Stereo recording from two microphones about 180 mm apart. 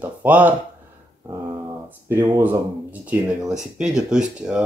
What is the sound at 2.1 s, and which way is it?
Speech, 10° right (ahead or behind).